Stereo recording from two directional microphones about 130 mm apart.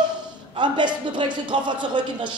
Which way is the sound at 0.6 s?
35° right (ahead or behind).